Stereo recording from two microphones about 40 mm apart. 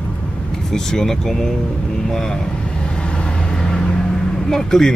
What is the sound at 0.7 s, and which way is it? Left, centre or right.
Speech, centre.